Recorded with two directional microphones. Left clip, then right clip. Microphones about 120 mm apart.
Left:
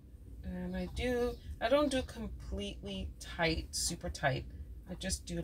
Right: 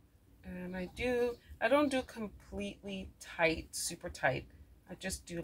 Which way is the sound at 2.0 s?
5° left (ahead or behind).